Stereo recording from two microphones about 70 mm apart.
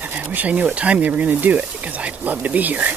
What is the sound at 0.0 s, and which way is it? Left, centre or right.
Speech, right.